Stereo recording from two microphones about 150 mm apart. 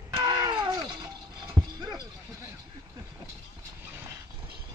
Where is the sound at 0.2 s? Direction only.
30° right (ahead or behind).